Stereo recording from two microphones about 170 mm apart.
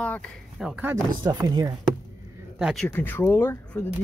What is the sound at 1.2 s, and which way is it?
Speech, 25° right (ahead or behind).